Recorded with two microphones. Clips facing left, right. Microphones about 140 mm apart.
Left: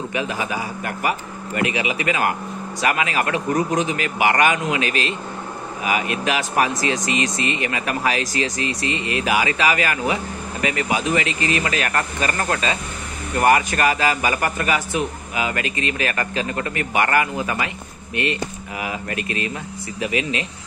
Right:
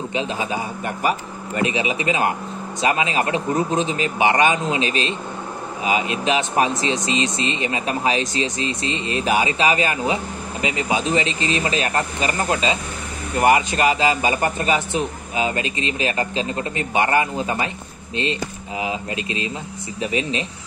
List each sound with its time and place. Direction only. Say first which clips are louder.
0.1 s speech: right 1 dB; 25° right (ahead or behind)